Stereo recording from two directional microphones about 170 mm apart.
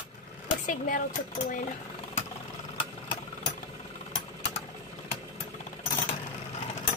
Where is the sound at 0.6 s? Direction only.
50° left (ahead or behind).